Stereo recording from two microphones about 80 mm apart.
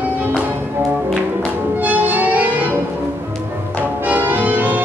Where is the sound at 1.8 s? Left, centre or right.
Centre.